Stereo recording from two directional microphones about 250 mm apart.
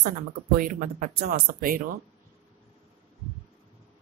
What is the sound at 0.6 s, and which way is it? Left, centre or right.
Speech, right.